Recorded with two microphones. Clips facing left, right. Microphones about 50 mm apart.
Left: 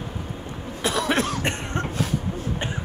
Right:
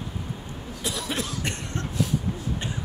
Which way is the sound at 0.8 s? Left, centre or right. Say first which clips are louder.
Left 8 dB; left.